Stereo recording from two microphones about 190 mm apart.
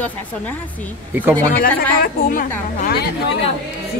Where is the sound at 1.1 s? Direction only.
10° right (ahead or behind).